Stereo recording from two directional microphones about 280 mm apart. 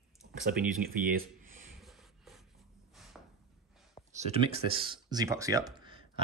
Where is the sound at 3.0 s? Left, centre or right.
Centre.